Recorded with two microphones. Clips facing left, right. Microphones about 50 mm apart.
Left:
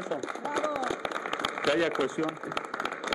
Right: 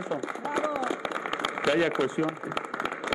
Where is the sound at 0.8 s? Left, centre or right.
Centre.